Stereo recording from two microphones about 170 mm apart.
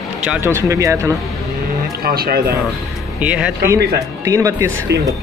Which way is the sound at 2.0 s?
65° right (ahead or behind).